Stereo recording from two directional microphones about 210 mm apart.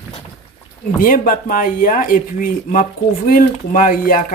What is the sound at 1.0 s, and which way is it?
Speech, 40° left (ahead or behind).